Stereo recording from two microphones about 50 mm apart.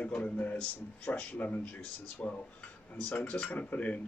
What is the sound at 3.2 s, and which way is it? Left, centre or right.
Speech, left.